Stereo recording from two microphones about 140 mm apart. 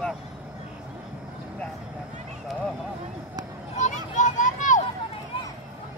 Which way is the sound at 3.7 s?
60° left (ahead or behind).